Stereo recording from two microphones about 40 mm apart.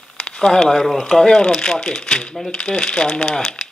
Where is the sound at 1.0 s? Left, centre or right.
Centre.